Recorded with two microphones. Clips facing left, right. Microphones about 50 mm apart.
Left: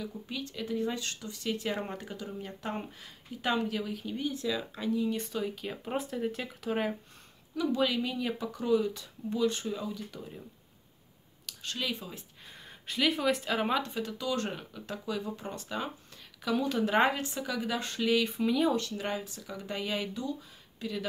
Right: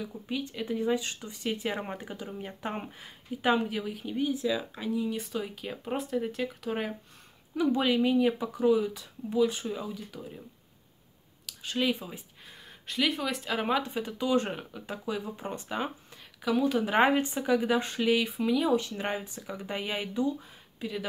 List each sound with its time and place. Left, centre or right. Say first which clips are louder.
0.0 s speech: right 3 dB; centre
7.5 s speech: right 3 dB; right; by 10.4 s centre
11.6 s speech: right 6 dB; centre
12.4 s speech: left 1 dB; centre
16.4 s speech: right 3 dB; centre
18.8 s speech: right 1 dB; right